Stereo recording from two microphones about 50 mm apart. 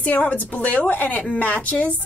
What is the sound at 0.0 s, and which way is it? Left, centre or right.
A woman's voice, left.